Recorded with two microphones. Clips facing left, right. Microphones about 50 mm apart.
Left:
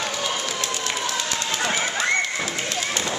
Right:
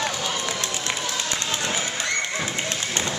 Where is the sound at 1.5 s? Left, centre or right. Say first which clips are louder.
Left 2 dB; left.